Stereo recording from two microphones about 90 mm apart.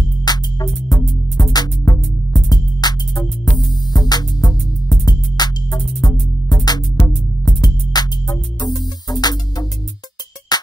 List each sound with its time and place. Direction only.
0.2 s music: 50° left (ahead or behind)